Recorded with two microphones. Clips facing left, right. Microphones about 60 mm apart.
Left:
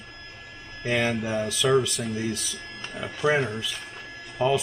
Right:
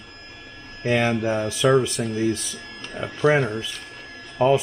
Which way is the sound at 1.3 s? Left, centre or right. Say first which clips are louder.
Right 4 dB; right.